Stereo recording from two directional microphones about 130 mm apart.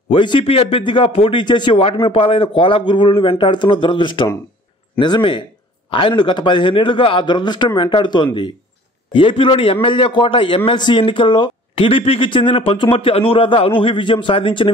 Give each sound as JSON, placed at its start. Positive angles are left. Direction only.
{"t": 0.1, "sound": "a man's voice", "side_deg": 40}